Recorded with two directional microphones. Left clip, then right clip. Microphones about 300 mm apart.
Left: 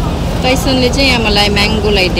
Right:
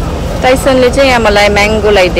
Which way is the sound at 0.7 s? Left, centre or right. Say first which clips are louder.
Right 6 dB; centre.